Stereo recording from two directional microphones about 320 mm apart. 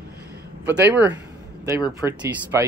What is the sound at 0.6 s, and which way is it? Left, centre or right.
Speech, centre.